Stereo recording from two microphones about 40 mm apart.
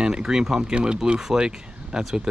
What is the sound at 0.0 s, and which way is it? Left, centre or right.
Speech, centre.